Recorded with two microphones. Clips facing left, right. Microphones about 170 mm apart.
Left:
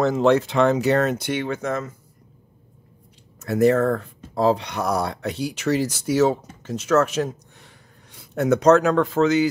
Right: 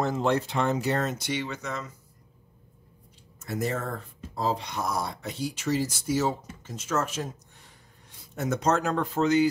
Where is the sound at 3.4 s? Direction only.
70° left (ahead or behind).